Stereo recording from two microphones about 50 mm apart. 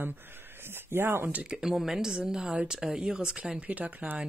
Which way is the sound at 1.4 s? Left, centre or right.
Centre.